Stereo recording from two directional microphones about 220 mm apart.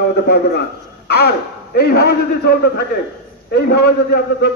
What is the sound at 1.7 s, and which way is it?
A man's voice, 45° left (ahead or behind).